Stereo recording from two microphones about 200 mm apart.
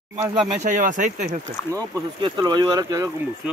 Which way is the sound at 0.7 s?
40° right (ahead or behind).